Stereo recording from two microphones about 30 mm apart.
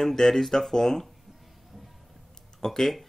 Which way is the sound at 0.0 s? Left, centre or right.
Centre.